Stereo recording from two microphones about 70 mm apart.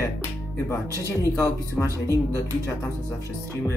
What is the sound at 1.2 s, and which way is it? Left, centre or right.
Speech, left.